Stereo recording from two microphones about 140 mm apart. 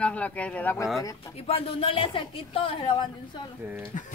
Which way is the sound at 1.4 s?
40° left (ahead or behind).